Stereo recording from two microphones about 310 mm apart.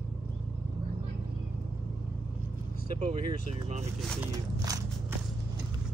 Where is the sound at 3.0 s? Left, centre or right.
Right.